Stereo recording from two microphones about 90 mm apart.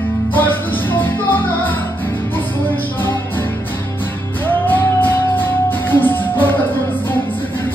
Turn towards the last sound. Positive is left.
turn(degrees=25)  # may be behind; listen again after turning